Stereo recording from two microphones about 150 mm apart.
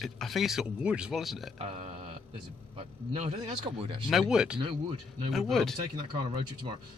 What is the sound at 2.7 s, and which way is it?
Speech, 45° right (ahead or behind).